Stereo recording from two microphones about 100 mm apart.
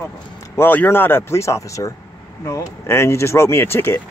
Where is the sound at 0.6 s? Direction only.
20° left (ahead or behind).